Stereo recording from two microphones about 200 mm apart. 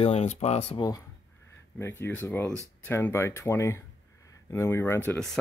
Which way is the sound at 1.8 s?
10° left (ahead or behind).